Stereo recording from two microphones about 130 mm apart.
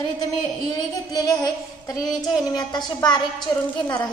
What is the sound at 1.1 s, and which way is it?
Speech, 30° left (ahead or behind).